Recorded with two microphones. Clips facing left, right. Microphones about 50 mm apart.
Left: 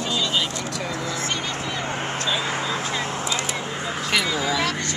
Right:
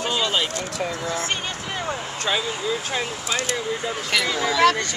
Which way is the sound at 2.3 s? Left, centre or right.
Left.